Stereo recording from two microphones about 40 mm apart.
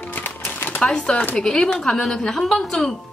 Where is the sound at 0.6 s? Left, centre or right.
Left.